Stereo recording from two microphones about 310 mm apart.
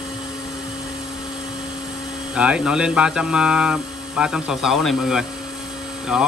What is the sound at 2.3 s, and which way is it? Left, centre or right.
Speech, centre.